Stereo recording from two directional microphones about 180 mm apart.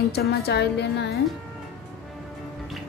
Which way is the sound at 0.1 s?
60° left (ahead or behind).